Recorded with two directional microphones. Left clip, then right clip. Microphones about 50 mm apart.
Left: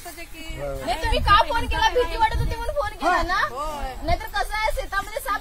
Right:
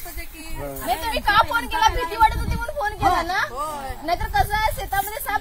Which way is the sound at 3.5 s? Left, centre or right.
Right.